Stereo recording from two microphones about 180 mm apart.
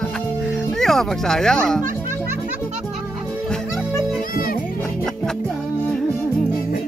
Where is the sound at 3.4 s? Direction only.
Centre (ahead or behind).